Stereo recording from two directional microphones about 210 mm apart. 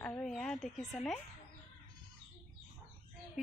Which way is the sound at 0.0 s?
5° left (ahead or behind).